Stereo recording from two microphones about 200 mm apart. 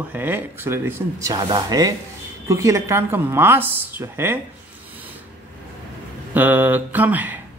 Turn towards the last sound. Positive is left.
turn(degrees=-10)  # may be behind; listen again after turning